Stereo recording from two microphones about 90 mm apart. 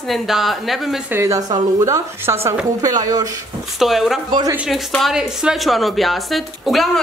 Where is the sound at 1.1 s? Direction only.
35° right (ahead or behind).